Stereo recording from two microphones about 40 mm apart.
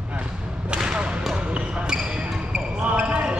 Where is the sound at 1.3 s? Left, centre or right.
Right.